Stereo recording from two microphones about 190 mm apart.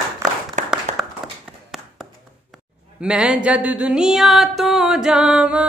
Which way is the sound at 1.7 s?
Centre (ahead or behind).